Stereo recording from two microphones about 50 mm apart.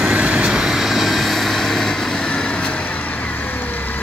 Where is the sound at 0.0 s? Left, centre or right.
Right; by 2.7 s left.